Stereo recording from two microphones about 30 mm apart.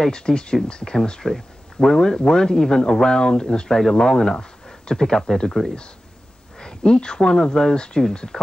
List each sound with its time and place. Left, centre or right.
0.0 s speech: left
1.3 s speech: centre; by 8.0 s left